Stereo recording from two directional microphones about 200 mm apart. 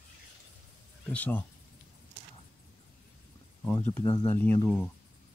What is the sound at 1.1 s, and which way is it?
Speech, 10° left (ahead or behind).